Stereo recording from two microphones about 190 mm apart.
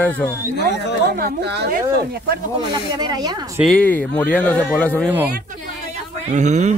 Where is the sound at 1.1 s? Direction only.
55° right (ahead or behind).